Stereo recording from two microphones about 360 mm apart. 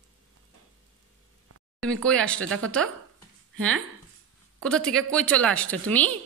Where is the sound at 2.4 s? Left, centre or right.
Right.